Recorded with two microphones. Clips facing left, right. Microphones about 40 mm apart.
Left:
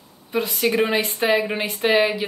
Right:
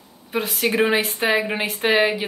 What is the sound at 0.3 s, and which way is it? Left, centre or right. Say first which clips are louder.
Speech: left 1 dB; centre.